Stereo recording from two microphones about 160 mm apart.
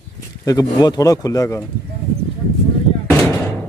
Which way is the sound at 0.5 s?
25° left (ahead or behind).